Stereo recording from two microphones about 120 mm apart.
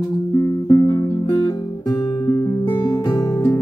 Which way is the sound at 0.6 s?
30° left (ahead or behind).